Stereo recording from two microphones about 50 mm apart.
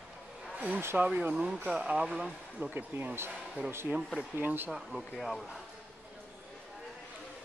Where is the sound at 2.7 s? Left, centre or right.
Right.